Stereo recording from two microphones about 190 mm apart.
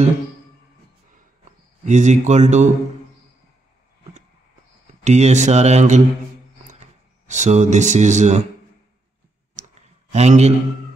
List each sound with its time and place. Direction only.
1.4 s speech: 40° right (ahead or behind)
5.0 s speech: 40° right (ahead or behind)
10.1 s speech: 35° right (ahead or behind)